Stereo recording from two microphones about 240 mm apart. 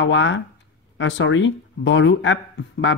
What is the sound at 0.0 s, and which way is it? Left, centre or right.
Speech, left.